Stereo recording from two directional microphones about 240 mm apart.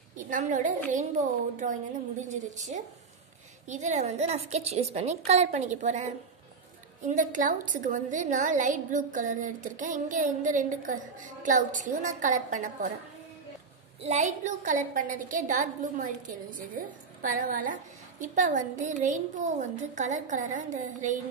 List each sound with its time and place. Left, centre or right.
0.3 s a woman's voice: right
7.1 s a woman's voice: right
14.0 s a woman's voice: right